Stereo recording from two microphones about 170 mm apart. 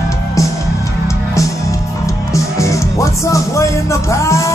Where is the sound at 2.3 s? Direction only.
20° left (ahead or behind).